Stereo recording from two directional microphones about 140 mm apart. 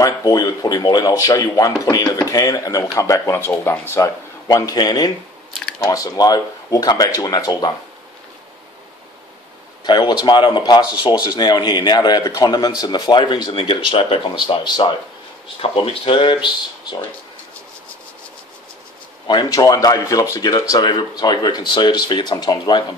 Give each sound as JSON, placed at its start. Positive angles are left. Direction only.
{"t": 0.0, "sound": "speech", "side_deg": 25}
{"t": 9.8, "sound": "a man's voice", "side_deg": 30}
{"t": 19.2, "sound": "a man's voice", "side_deg": 30}